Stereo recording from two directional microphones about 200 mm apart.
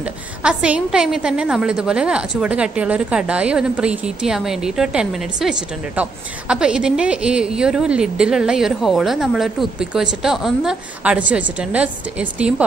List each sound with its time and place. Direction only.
0.0 s a woman's voice: 5° right (ahead or behind)